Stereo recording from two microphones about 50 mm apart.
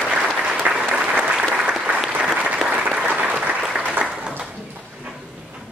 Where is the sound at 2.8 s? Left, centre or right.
Right.